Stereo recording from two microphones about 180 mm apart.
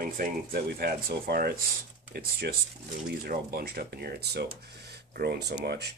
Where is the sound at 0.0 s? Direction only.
55° right (ahead or behind).